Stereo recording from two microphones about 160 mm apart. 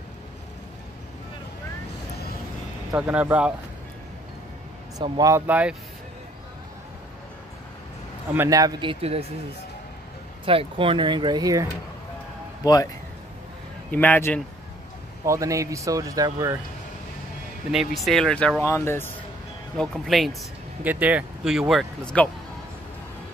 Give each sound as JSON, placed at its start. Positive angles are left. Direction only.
{"t": 2.9, "sound": "speech", "side_deg": -10}
{"t": 4.9, "sound": "speech", "side_deg": -25}
{"t": 5.5, "sound": "speech", "side_deg": -10}
{"t": 8.3, "sound": "speech", "side_deg": -15}
{"t": 10.4, "sound": "speech", "side_deg": -35}
{"t": 12.6, "sound": "speech", "side_deg": 25}
{"t": 13.8, "sound": "speech", "side_deg": 10}
{"t": 15.2, "sound": "speech", "side_deg": -20}
{"t": 17.6, "sound": "speech", "side_deg": 0}
{"t": 18.6, "sound": "speech", "side_deg": 15}
{"t": 19.8, "sound": "speech", "side_deg": 0}
{"t": 20.8, "sound": "speech", "side_deg": -10}